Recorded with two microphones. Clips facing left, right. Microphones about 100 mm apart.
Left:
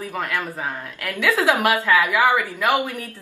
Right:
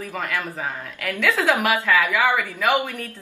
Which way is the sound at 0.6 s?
5° left (ahead or behind).